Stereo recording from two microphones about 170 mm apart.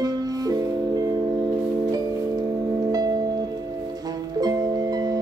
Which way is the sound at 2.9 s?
25° right (ahead or behind).